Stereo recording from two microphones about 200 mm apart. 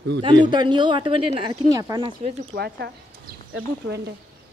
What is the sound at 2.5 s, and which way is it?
Speech, 55° right (ahead or behind).